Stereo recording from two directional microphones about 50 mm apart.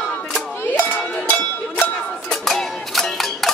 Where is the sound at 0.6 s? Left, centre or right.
Left.